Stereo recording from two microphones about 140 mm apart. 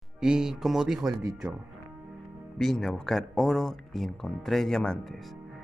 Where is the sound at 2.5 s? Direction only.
Centre (ahead or behind).